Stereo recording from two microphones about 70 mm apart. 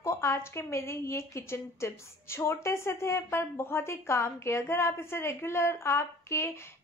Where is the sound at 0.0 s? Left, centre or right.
Left.